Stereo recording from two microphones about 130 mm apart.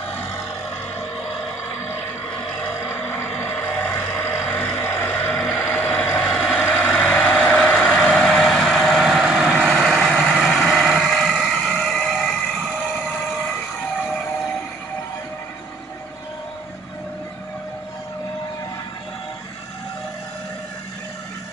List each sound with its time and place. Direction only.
2.8 s vehicle: 20° left (ahead or behind)
6.2 s vehicle: centre (ahead or behind)